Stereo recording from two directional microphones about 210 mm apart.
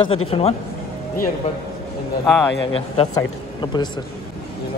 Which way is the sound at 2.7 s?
25° left (ahead or behind).